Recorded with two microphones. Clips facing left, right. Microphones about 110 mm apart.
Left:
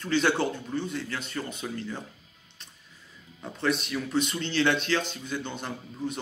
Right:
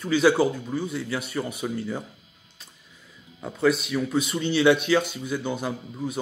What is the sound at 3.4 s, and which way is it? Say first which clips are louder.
Speech: right 6 dB; 5° right (ahead or behind).